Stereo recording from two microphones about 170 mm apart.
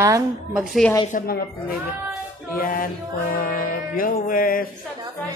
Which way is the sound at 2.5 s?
55° left (ahead or behind).